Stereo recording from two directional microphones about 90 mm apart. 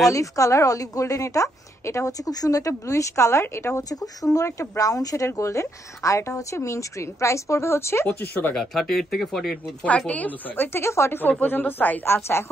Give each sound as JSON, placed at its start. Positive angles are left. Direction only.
{"t": 0.0, "sound": "a woman's voice", "side_deg": 35}
{"t": 8.5, "sound": "speech", "side_deg": 5}
{"t": 9.8, "sound": "a woman's voice", "side_deg": 15}